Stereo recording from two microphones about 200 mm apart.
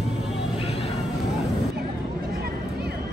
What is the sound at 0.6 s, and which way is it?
Vehicle, 30° left (ahead or behind).